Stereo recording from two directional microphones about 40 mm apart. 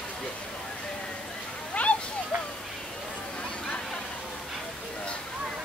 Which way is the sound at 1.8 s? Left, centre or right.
Left.